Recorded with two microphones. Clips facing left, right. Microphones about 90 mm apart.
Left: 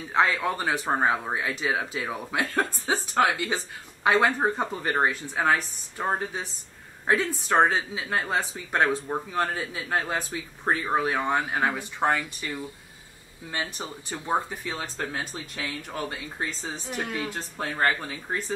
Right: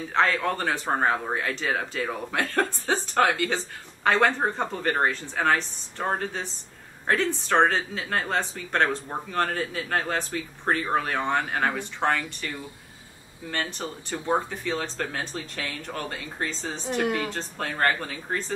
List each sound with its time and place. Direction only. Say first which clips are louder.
0.1 s speech: even; 10° left (ahead or behind)